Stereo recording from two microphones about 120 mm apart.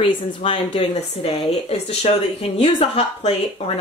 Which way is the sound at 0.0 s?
50° left (ahead or behind).